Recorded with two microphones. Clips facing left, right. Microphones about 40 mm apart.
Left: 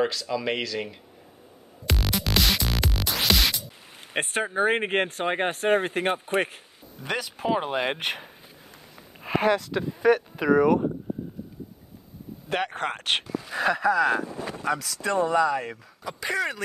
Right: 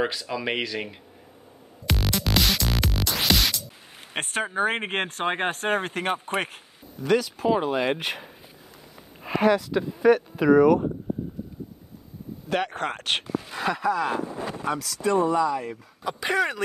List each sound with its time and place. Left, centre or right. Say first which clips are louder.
0.0 s speech: left 1 dB; centre
2.0 s music: even; centre
4.1 s speech: left 1 dB; centre
7.0 s speech: right 7 dB; left
9.2 s speech: right 2 dB; left
12.4 s speech: right 1 dB; left
13.5 s speech: left 3 dB; left
15.2 s speech: even; left
16.0 s speech: right 3 dB; right